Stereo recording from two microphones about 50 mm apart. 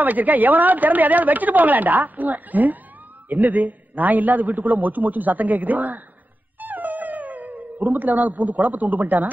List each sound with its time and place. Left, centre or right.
0.0 s a woman's voice: right
6.6 s dog: right